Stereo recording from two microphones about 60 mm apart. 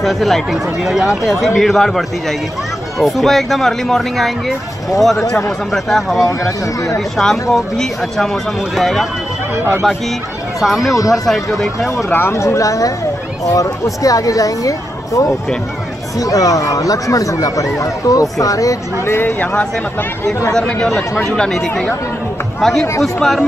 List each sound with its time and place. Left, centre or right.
0.0 s speech: centre
10.6 s speech: centre
12.1 s speech: left
19.1 s speech: left
20.5 s speech: centre